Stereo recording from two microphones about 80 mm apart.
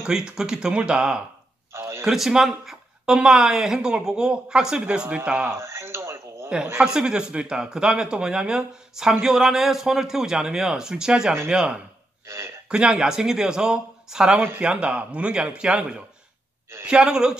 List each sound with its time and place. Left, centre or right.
0.0 s a woman's voice: centre
1.7 s a sound: right
2.0 s a woman's voice: centre
5.5 s a sound: right
6.8 s a woman's voice: centre
12.3 s speech: right
12.6 s a woman's voice: centre